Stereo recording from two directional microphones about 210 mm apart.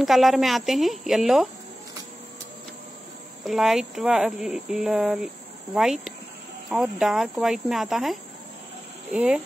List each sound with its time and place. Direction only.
0.0 s speech: centre (ahead or behind)
3.4 s speech: centre (ahead or behind)
6.7 s speech: centre (ahead or behind)